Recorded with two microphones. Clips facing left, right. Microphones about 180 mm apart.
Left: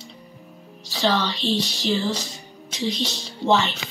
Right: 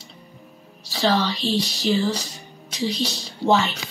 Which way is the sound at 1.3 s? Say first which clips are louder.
Even; 40° right (ahead or behind).